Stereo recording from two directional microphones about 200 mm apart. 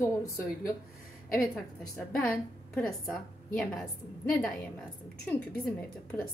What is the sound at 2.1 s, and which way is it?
A woman's voice, 5° left (ahead or behind).